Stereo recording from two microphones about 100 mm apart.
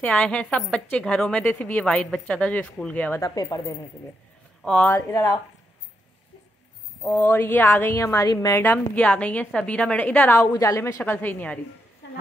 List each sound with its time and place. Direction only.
0.0 s speech: 10° left (ahead or behind)
1.4 s speech: 20° left (ahead or behind)
3.2 s speech: 35° left (ahead or behind)
4.6 s speech: 10° left (ahead or behind)
4.9 s speech: 35° left (ahead or behind)
7.0 s a woman's voice: 20° left (ahead or behind)
8.9 s speech: 15° left (ahead or behind)
10.5 s a woman's voice: 30° left (ahead or behind); by 11.6 s 15° left (ahead or behind)